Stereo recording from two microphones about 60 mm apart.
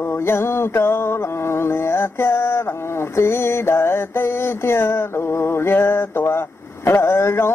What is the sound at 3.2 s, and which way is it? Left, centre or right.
Mantra, left.